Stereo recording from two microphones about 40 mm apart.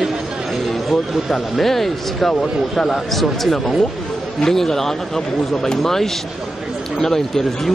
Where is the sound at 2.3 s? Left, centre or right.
Centre.